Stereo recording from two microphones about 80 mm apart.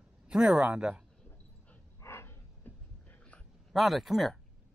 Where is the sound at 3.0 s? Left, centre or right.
Centre.